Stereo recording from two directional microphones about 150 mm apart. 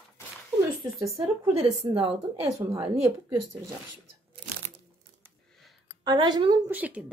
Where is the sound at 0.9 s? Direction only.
20° right (ahead or behind).